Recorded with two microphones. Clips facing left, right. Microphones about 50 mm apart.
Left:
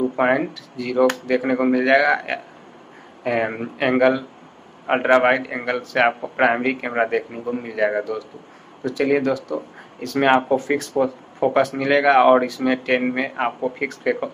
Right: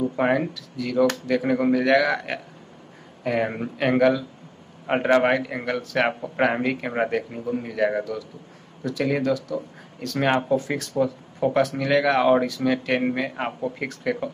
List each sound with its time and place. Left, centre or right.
0.0 s a man's voice: left